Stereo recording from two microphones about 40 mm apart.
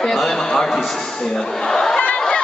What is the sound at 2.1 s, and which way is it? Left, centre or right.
Crowd, left.